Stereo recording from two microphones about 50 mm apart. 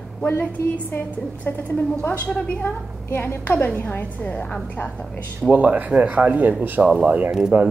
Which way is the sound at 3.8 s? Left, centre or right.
Left.